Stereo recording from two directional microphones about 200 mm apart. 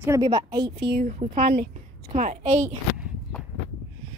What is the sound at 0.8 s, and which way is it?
Speech, 55° right (ahead or behind).